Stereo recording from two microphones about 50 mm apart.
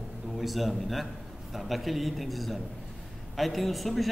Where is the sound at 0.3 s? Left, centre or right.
Centre.